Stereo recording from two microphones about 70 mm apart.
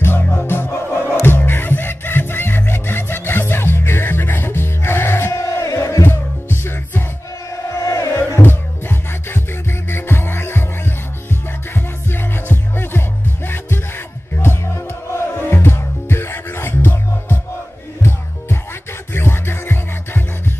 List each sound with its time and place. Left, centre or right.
0.0 s music: left
7.8 s music: left
8.4 s music: left
11.7 s music: left
14.3 s music: left
19.1 s music: left